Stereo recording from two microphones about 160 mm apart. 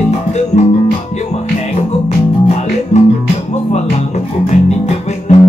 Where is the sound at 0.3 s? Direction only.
45° left (ahead or behind).